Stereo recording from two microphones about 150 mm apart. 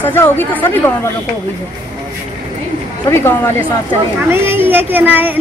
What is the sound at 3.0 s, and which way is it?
Speech, 15° left (ahead or behind).